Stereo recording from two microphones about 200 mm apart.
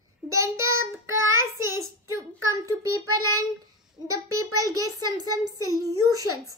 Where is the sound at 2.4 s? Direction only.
15° right (ahead or behind).